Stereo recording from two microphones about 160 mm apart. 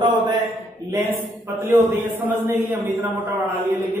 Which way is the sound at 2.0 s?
10° right (ahead or behind).